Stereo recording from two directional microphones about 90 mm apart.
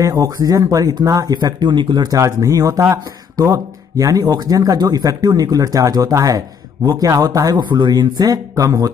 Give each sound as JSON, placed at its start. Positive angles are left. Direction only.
{"t": 0.0, "sound": "speech", "side_deg": -40}
{"t": 2.1, "sound": "speech", "side_deg": -35}